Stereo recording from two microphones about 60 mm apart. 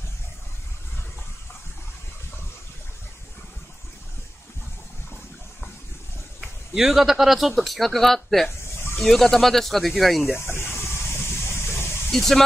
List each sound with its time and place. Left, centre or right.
6.7 s speech: centre
10.3 s a sound: left
12.1 s speech: centre